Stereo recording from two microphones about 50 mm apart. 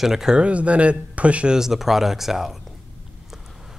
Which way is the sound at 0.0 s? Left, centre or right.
Centre.